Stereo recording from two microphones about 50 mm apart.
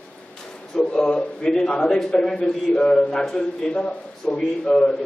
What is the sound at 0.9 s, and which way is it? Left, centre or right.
A man's voice, centre.